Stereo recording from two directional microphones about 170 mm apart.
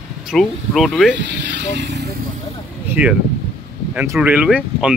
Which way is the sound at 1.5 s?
90° right.